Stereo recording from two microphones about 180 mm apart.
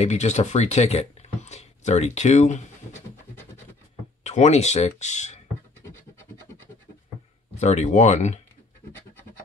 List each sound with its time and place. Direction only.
0.0 s speech: 40° left (ahead or behind)
4.2 s speech: 40° left (ahead or behind)
7.5 s speech: 40° left (ahead or behind)